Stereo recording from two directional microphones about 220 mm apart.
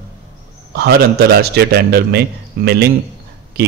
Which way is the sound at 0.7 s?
45° right (ahead or behind).